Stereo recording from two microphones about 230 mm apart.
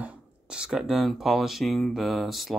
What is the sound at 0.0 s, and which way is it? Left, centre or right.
Speech, centre.